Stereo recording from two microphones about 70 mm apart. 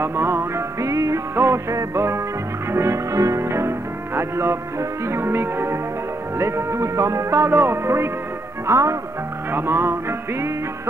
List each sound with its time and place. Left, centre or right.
0.0 s music: right
0.7 s music: right
1.3 s music: right
6.3 s speech: right
8.6 s music: right
9.5 s speech: right